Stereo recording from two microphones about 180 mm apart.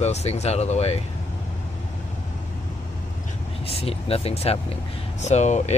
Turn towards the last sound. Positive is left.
turn(degrees=40)  # may be behind; listen again after turning